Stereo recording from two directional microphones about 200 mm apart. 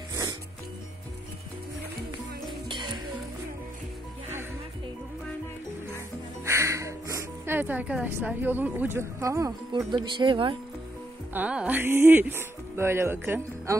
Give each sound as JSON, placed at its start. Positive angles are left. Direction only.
{"t": 0.1, "sound": "music", "side_deg": -20}
{"t": 2.7, "sound": "music", "side_deg": -20}
{"t": 6.4, "sound": "speech", "side_deg": -15}
{"t": 11.3, "sound": "speech", "side_deg": -5}